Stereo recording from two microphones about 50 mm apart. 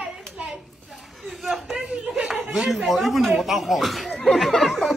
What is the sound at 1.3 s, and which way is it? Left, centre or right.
Speech, centre.